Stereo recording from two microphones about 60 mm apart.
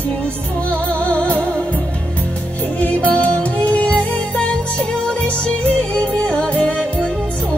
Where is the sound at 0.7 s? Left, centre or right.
Left.